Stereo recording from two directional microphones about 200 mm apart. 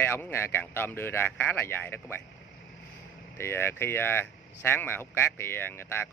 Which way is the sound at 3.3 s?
10° left (ahead or behind).